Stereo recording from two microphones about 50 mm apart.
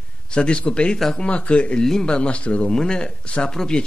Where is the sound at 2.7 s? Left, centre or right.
Centre.